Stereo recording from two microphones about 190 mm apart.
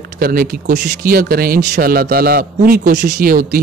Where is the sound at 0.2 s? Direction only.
50° right (ahead or behind).